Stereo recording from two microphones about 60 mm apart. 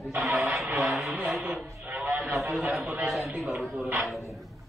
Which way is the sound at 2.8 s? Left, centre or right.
Right.